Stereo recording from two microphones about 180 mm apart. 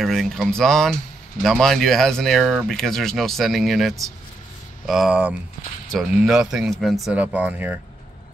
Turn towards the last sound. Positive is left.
turn(degrees=-10)  # may be behind; listen again after turning